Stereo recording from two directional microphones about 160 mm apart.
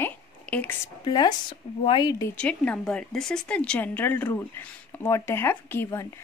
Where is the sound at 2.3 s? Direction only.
10° left (ahead or behind).